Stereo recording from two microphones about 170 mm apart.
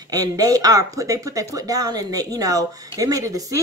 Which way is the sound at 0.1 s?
20° right (ahead or behind).